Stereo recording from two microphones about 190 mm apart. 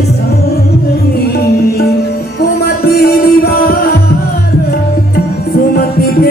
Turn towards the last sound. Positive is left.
turn(degrees=55)  # may be behind; listen again after turning